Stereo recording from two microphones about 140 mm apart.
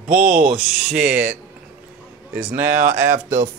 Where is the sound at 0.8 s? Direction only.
5° right (ahead or behind).